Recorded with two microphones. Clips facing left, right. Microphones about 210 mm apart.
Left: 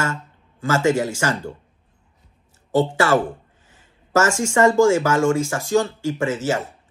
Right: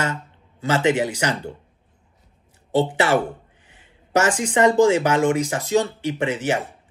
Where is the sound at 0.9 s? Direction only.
15° right (ahead or behind).